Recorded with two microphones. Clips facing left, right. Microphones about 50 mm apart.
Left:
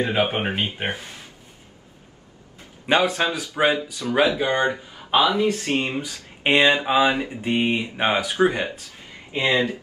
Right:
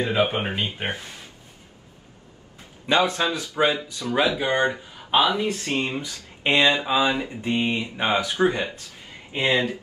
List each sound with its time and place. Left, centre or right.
0.0 s speech: left
0.3 s speech: centre
2.9 s speech: left
4.4 s speech: centre
4.6 s speech: centre
5.1 s speech: left